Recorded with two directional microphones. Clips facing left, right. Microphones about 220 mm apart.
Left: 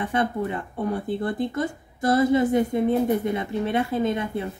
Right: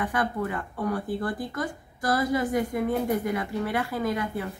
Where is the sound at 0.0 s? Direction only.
25° left (ahead or behind).